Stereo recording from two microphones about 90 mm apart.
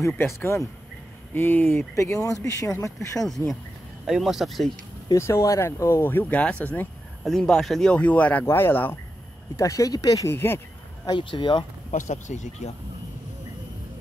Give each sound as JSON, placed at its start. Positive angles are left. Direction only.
{"t": 0.0, "sound": "speech", "side_deg": 30}
{"t": 2.0, "sound": "speech", "side_deg": 35}
{"t": 4.0, "sound": "speech", "side_deg": -5}
{"t": 5.1, "sound": "speech", "side_deg": 35}
{"t": 9.6, "sound": "speech", "side_deg": 40}
{"t": 10.3, "sound": "speech", "side_deg": 25}
{"t": 11.1, "sound": "speech", "side_deg": 55}